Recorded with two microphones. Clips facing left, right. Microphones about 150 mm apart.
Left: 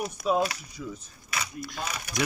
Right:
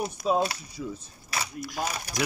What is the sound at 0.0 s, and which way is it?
Speech, 30° right (ahead or behind).